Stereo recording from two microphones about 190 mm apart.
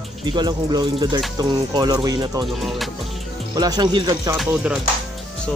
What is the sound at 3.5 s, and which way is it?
Speech, 20° right (ahead or behind).